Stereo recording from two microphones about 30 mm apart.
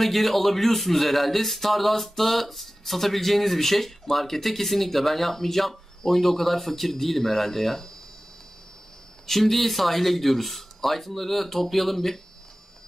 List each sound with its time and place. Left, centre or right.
0.0 s a man's voice: centre
9.3 s a man's voice: centre